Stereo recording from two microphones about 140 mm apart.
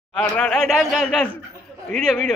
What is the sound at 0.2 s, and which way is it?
A man's voice, 5° left (ahead or behind).